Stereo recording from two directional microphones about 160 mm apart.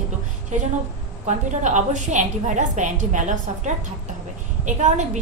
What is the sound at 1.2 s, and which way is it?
Speech, 50° right (ahead or behind).